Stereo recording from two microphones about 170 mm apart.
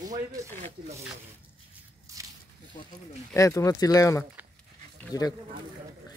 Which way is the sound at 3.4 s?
15° left (ahead or behind).